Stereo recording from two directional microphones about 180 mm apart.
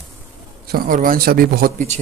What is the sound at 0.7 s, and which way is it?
Speech, 55° right (ahead or behind).